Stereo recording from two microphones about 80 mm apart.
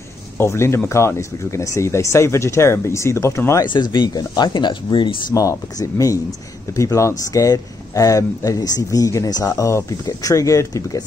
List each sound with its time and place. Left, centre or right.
0.4 s speech: left
3.6 s speech: left
5.3 s speech: left